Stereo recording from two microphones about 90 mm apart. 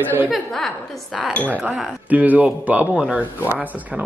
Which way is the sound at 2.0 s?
20° right (ahead or behind).